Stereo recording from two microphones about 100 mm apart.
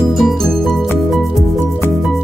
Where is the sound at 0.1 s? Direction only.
Centre (ahead or behind).